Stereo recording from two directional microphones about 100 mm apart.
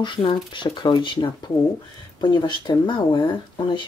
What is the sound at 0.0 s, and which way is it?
Speech, 55° left (ahead or behind).